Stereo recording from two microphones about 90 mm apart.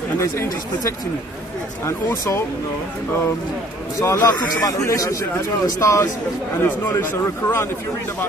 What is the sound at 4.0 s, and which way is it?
A man's voice, 40° left (ahead or behind).